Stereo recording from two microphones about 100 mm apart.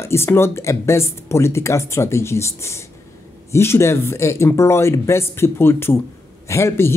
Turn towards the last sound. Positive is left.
turn(degrees=25)  # may be behind; listen again after turning